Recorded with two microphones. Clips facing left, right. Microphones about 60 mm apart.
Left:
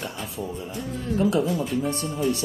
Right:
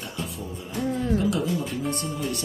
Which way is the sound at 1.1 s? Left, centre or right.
Left.